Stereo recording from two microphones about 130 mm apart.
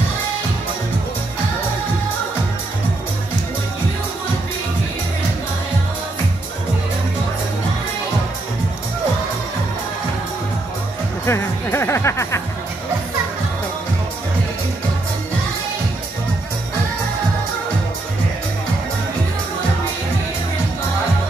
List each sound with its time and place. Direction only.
11.2 s music: 20° left (ahead or behind)